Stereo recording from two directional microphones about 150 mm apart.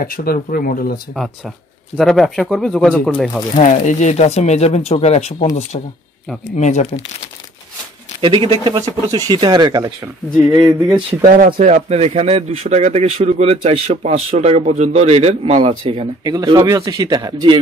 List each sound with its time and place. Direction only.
0.0 s speech: 80° left
2.0 s speech: centre (ahead or behind)
3.5 s speech: 50° left (ahead or behind)
6.5 s speech: 50° left (ahead or behind)
8.2 s speech: 35° right (ahead or behind)
11.3 s speech: 65° right (ahead or behind); by 16.1 s 40° right (ahead or behind)
16.3 s speech: 25° right (ahead or behind)